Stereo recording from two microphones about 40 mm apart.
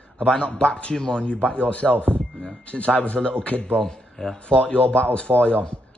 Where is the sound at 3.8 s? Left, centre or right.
Centre.